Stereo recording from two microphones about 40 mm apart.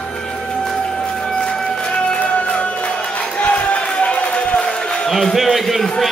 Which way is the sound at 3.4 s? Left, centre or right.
Left.